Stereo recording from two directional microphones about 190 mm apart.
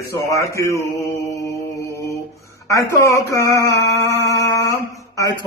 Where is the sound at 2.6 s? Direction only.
15° left (ahead or behind).